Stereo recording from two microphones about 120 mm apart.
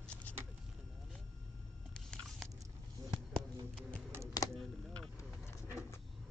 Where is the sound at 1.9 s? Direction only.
5° left (ahead or behind).